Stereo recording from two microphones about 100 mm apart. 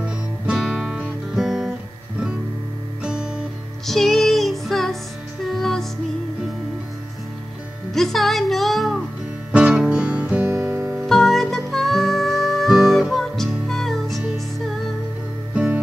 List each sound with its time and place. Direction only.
0.0 s guitar: 10° right (ahead or behind)
3.0 s music: 10° right (ahead or behind)
7.9 s music: centre (ahead or behind)
9.5 s music: 10° right (ahead or behind)
10.5 s music: 30° right (ahead or behind)
11.0 s music: centre (ahead or behind)
15.5 s music: 15° right (ahead or behind)